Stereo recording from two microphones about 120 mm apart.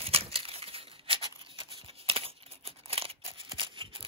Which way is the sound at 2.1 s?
50° right (ahead or behind).